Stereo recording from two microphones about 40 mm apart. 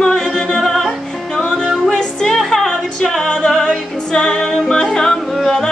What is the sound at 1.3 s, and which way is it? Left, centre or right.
Music, centre.